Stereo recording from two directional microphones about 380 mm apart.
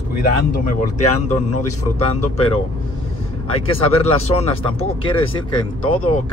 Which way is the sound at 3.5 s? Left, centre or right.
Centre.